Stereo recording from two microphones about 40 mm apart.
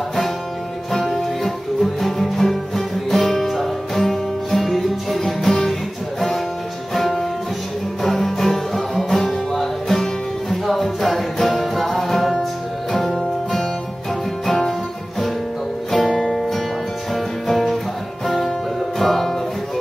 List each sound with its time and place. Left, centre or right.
1.1 s music: centre
6.9 s music: centre
14.4 s music: centre